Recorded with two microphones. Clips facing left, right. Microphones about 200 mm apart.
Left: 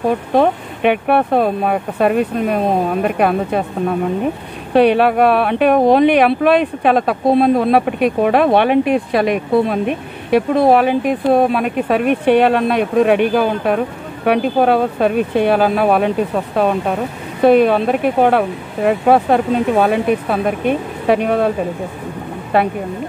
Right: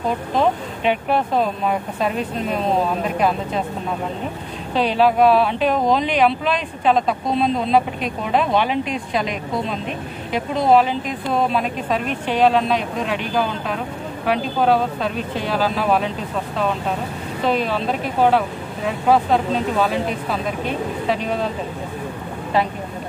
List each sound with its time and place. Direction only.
0.3 s speech: 60° left (ahead or behind)
4.7 s speech: 60° left (ahead or behind)
22.5 s speech: 60° left (ahead or behind)